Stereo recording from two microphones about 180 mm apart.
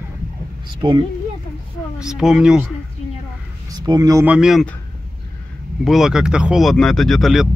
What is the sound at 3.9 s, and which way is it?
Speech, 20° right (ahead or behind).